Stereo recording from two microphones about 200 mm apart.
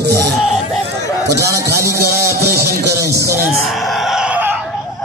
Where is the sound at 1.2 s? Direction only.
15° right (ahead or behind).